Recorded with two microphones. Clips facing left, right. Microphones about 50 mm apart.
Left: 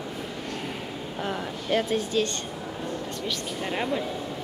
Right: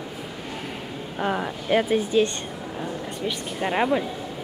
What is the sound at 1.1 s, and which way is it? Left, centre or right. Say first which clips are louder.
Speech: right 6 dB; right.